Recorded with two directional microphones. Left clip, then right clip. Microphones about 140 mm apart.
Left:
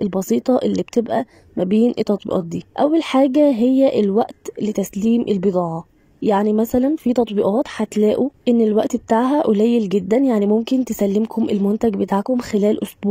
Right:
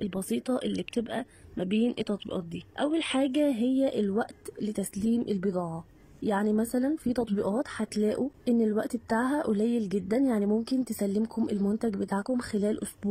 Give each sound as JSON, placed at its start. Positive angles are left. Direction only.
{"t": 0.0, "sound": "speech", "side_deg": 35}